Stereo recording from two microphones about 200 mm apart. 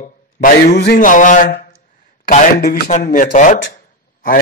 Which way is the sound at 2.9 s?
40° left (ahead or behind).